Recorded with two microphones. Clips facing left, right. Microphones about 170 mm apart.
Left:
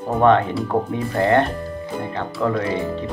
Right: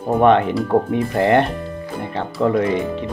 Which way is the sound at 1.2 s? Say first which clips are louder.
Right 1 dB; 20° right (ahead or behind).